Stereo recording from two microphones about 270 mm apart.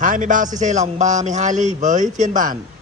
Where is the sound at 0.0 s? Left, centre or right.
Right.